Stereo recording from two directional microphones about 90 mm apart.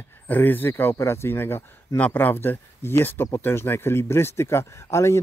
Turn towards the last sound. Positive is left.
turn(degrees=30)  # may be behind; listen again after turning